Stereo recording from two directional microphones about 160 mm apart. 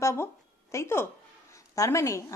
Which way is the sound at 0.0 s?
15° left (ahead or behind).